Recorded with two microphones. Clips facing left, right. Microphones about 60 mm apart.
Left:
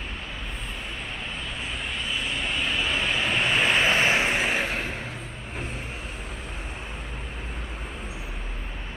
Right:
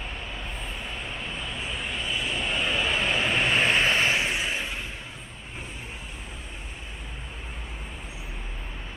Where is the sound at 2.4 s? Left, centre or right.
Centre.